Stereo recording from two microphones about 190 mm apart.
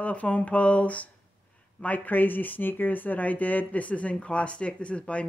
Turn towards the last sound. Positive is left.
turn(degrees=5)  # may be behind; listen again after turning